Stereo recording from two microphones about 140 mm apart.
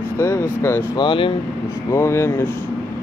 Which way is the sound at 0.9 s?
35° left (ahead or behind).